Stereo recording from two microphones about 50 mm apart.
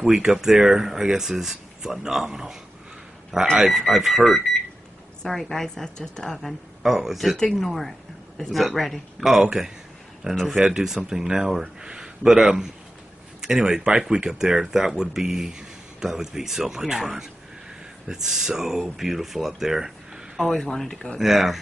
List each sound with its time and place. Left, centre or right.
0.0 s speech: centre
3.7 s a woman's voice: centre
6.8 s speech: centre
7.5 s speech: centre
9.3 s speech: centre
11.8 s a sound: centre
13.4 s speech: centre
20.3 s a woman's voice: centre
21.2 s speech: centre